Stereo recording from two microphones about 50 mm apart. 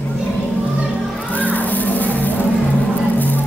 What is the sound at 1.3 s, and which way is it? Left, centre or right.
Music, left.